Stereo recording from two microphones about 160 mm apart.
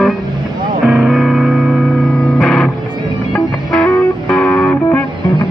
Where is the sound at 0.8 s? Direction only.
Centre (ahead or behind).